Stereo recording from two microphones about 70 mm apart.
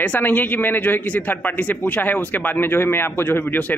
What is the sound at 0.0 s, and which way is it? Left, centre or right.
A man's voice, left.